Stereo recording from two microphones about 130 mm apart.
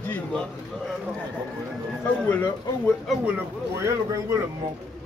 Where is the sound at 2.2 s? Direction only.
15° left (ahead or behind).